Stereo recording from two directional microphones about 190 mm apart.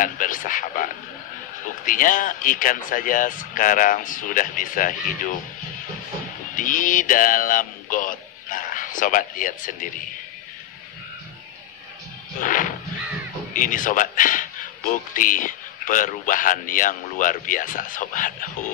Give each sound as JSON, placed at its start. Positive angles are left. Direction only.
{"t": 0.0, "sound": "a man's voice", "side_deg": 45}
{"t": 6.5, "sound": "mantra", "side_deg": 45}
{"t": 12.4, "sound": "wild animals", "side_deg": 45}
{"t": 13.5, "sound": "a man's voice", "side_deg": 45}